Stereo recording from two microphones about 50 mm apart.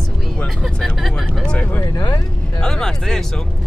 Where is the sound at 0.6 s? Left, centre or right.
Centre.